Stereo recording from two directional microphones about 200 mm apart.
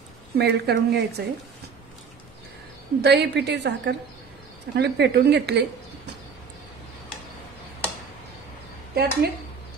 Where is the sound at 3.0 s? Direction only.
55° right (ahead or behind).